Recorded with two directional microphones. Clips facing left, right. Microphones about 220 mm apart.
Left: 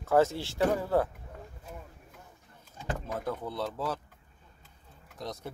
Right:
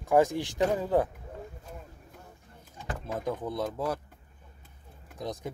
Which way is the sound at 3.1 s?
15° right (ahead or behind).